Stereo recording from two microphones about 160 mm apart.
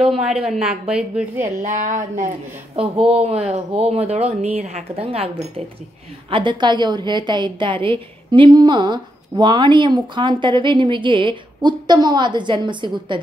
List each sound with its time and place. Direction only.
0.2 s a woman's voice: centre (ahead or behind)
1.4 s speech: 50° right (ahead or behind)
2.7 s a woman's voice: 35° right (ahead or behind)